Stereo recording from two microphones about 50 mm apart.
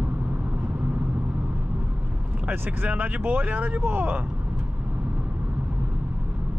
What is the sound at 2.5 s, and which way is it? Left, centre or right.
Speech, right.